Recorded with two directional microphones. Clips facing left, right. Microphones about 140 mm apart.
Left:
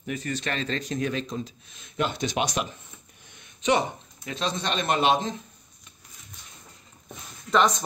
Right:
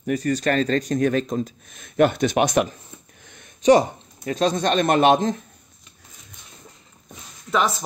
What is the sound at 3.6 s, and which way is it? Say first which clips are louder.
Speech: right 8 dB; 40° right (ahead or behind).